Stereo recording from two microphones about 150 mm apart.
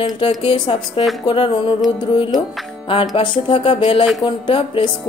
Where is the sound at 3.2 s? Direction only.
35° left (ahead or behind).